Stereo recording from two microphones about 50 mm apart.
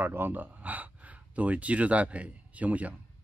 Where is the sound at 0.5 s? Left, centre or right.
Right.